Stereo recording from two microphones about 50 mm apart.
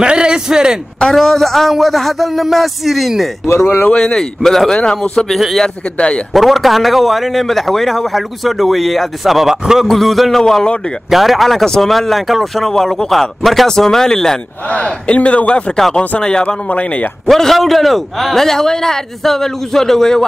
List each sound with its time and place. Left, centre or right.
0.0 s a man's voice: centre
1.1 s speech: centre
3.4 s speech: left
3.9 s a man's voice: centre
4.7 s a man's voice: left
6.3 s speech: centre
9.8 s speech: centre
10.4 s a man's voice: centre
11.1 s a man's voice: centre
14.7 s a man's voice: left
16.6 s a man's voice: left
17.3 s a man's voice: centre